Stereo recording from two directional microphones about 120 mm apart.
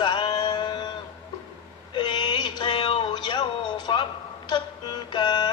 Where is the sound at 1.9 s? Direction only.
40° left (ahead or behind).